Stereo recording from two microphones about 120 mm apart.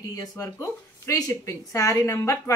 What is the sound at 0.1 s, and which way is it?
Speech, 30° left (ahead or behind).